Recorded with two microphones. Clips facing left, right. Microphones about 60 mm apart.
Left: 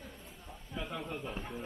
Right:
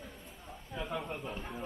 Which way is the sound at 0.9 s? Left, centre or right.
Centre.